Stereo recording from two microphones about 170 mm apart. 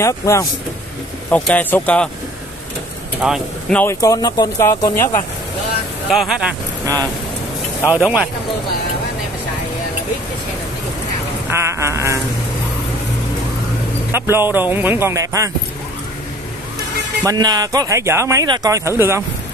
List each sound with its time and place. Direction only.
0.0 s speech: 20° left (ahead or behind)
3.2 s speech: 5° right (ahead or behind)
3.7 s speech: 15° left (ahead or behind)
6.0 s speech: 5° right (ahead or behind)
7.9 s speech: 10° right (ahead or behind)
11.5 s speech: 15° right (ahead or behind)
14.1 s speech: 15° right (ahead or behind)
17.2 s speech: 20° right (ahead or behind)